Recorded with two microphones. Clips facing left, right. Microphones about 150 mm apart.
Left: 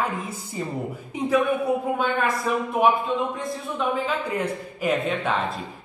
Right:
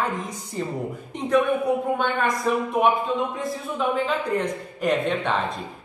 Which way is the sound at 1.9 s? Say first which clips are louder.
Even; 5° left (ahead or behind).